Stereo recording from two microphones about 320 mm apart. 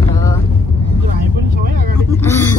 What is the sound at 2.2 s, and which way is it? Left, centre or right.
Speech, centre.